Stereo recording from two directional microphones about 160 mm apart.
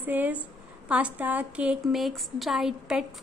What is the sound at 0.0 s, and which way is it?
A woman's voice, 10° right (ahead or behind).